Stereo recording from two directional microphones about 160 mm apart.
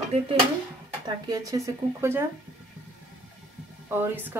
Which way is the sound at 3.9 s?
10° right (ahead or behind).